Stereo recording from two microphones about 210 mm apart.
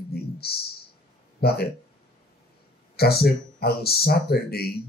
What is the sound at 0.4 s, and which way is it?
Speech, 50° left (ahead or behind).